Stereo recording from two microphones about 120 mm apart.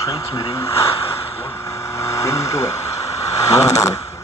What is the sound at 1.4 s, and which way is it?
Speech, 20° left (ahead or behind).